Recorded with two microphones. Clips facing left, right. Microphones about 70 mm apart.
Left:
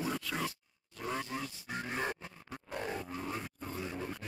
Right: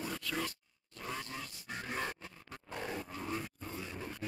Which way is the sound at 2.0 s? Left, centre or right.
Centre.